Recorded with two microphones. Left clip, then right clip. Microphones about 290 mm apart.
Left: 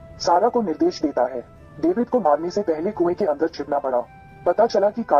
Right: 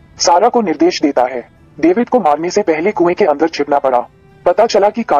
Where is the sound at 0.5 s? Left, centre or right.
Right.